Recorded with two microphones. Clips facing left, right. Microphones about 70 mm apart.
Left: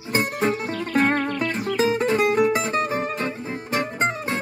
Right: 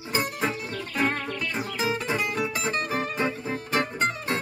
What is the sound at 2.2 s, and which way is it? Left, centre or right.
Music, left.